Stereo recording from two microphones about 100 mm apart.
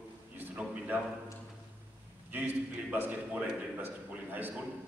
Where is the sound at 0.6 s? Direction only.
15° right (ahead or behind).